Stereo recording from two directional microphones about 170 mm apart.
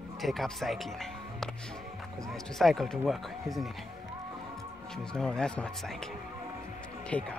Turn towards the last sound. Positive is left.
turn(degrees=5)  # may be behind; listen again after turning